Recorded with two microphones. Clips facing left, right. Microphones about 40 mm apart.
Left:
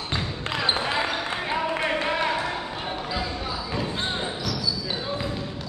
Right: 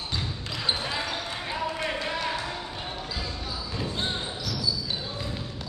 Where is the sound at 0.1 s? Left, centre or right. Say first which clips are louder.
Left 7 dB; left.